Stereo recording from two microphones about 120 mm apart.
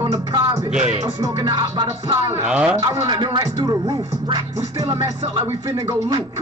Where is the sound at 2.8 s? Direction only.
30° right (ahead or behind).